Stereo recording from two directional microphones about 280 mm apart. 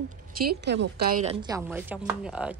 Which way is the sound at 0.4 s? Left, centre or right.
Right.